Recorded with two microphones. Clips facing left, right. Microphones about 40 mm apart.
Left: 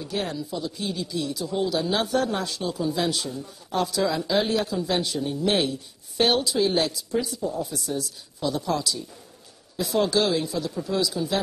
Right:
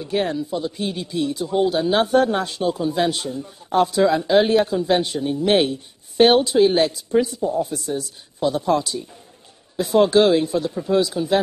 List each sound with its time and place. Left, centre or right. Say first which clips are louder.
0.0 s speech: right 7 dB; right